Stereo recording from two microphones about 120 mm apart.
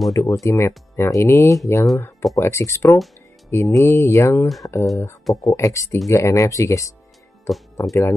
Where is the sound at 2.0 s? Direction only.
20° left (ahead or behind).